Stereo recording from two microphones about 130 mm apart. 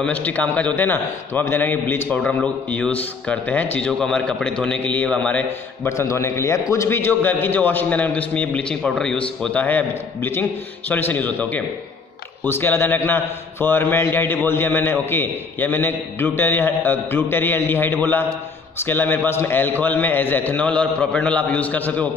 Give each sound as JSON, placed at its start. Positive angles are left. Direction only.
{"t": 0.0, "sound": "a man's voice", "side_deg": 10}
{"t": 5.9, "sound": "a man's voice", "side_deg": 20}